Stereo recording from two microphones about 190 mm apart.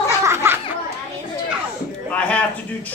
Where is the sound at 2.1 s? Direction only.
5° left (ahead or behind).